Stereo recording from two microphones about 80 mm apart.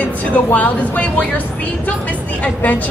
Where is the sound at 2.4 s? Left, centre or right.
Centre.